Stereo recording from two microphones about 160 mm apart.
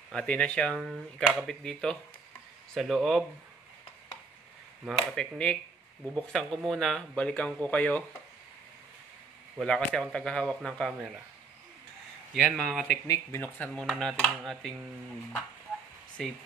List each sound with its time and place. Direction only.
0.1 s speech: 5° left (ahead or behind)
4.8 s speech: 5° left (ahead or behind)
9.6 s speech: 5° left (ahead or behind)
12.4 s speech: centre (ahead or behind)
13.0 s speech: 20° left (ahead or behind)
13.7 s speech: 5° left (ahead or behind)
16.2 s speech: 5° left (ahead or behind)